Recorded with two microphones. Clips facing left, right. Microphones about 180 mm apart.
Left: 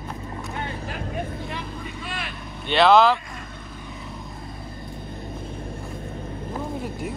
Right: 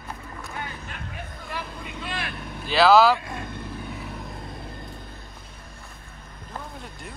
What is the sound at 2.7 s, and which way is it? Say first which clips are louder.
Speech: left 1 dB; 5° right (ahead or behind).